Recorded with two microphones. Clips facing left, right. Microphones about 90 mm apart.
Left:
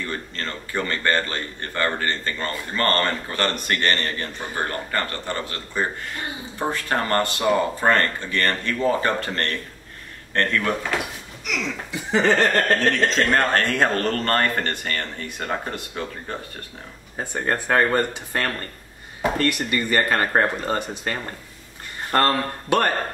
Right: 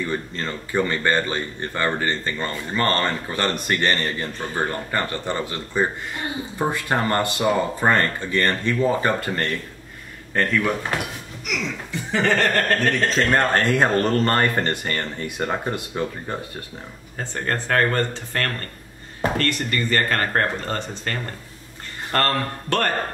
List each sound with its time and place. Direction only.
0.0 s speech: 15° right (ahead or behind)
11.9 s a sound: 20° left (ahead or behind)
13.1 s speech: 15° right (ahead or behind)
17.2 s speech: 10° left (ahead or behind)